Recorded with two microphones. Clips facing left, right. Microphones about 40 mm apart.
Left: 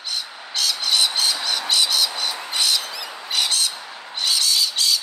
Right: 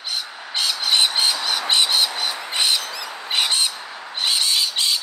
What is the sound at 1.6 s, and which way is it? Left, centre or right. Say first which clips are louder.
Bird: right 2 dB; right.